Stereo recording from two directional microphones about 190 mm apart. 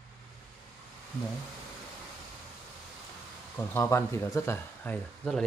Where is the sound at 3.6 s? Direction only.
15° left (ahead or behind).